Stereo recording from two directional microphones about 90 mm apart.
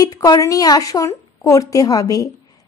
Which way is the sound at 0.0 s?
45° left (ahead or behind).